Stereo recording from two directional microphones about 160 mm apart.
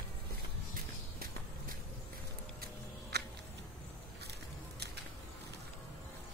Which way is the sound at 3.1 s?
90° right.